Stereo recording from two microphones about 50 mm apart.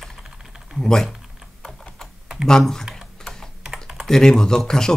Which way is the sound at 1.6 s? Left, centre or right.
Centre.